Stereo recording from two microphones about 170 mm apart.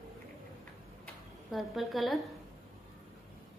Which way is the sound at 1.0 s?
Centre (ahead or behind).